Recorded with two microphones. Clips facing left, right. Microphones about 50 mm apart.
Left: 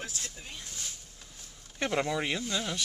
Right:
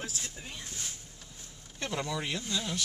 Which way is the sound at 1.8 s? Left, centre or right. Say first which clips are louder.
Left 5 dB; left.